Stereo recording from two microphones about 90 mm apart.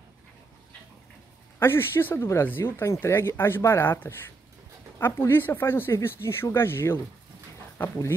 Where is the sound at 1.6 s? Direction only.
25° left (ahead or behind).